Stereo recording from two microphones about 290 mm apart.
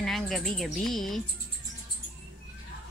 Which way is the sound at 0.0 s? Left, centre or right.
Centre.